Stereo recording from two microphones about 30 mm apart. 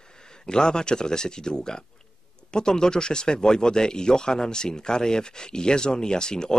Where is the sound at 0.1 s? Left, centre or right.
Left.